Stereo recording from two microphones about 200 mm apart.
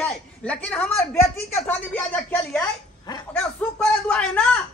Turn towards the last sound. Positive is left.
turn(degrees=5)  # may be behind; listen again after turning